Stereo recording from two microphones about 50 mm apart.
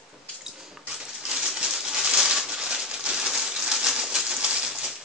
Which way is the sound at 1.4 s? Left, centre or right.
Centre.